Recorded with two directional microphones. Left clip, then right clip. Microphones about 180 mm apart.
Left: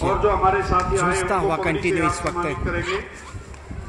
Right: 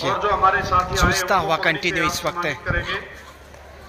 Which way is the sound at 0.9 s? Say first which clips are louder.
Right 2 dB; 5° left (ahead or behind).